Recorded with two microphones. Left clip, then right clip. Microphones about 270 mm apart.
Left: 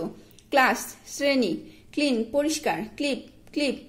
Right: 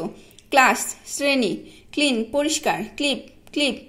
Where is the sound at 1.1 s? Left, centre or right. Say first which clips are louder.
Right 3 dB; centre.